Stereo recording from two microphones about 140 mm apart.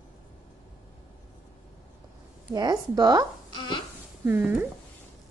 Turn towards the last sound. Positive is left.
turn(degrees=-10)  # may be behind; listen again after turning